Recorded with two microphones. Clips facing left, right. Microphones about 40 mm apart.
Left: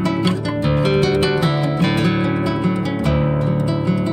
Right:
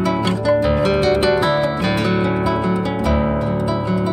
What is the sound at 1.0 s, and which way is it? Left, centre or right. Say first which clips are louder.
Guitar: right 2 dB; centre.